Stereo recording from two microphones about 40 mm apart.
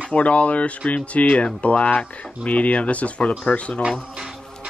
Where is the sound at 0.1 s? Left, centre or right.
Left.